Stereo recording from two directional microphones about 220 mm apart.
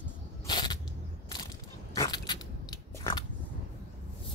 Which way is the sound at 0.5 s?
20° left (ahead or behind).